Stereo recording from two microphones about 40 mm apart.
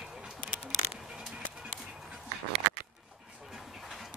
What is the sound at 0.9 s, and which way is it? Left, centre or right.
Music, centre.